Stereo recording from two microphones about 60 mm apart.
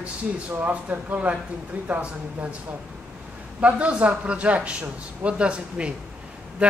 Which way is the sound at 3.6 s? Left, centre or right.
Right.